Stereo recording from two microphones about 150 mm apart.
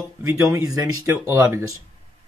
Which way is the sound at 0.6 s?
25° right (ahead or behind).